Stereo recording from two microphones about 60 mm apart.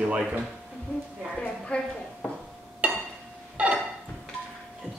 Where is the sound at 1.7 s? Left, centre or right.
Centre.